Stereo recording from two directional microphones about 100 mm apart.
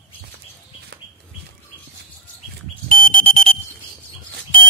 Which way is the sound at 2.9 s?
65° right (ahead or behind).